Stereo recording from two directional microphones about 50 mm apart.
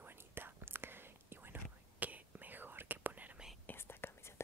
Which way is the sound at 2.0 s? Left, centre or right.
Right.